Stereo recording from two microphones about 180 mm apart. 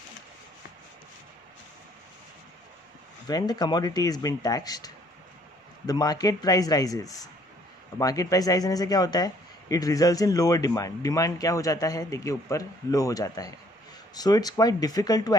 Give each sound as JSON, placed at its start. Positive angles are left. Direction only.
{"t": 3.3, "sound": "speech", "side_deg": 20}